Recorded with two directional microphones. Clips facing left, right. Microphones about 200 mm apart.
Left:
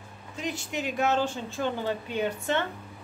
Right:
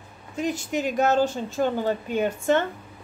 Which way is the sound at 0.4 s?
45° right (ahead or behind).